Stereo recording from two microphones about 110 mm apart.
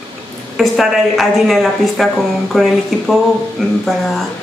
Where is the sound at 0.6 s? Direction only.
Centre (ahead or behind).